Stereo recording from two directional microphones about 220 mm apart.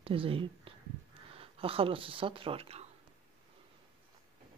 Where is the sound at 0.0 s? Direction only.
25° right (ahead or behind).